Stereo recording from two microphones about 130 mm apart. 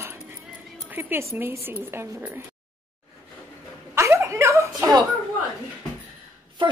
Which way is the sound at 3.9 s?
20° right (ahead or behind).